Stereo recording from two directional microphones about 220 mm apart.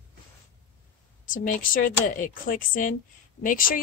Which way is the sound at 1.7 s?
40° left (ahead or behind).